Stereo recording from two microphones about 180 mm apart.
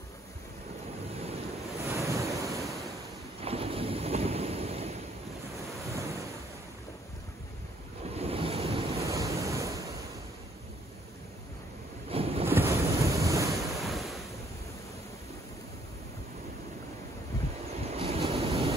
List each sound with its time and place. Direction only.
1.9 s thunder: 15° right (ahead or behind)
3.4 s wind noise: 35° right (ahead or behind)
5.9 s ocean: 15° right (ahead or behind)
8.1 s waves: 35° right (ahead or behind)
9.0 s waves: 15° right (ahead or behind)
12.1 s a sound: 30° right (ahead or behind)
12.4 s wind noise: 15° right (ahead or behind)
13.7 s waves: centre (ahead or behind)
17.8 s waves: 35° right (ahead or behind)